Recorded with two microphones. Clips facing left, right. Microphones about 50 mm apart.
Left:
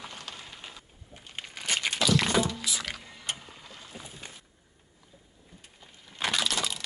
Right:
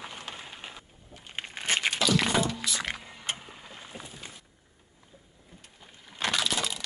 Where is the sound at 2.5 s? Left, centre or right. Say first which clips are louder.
Right 1 dB; centre.